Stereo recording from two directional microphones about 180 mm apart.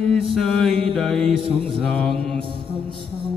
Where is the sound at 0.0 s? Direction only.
Centre (ahead or behind).